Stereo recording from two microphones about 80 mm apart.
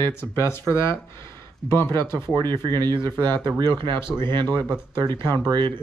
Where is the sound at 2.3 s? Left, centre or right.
Right.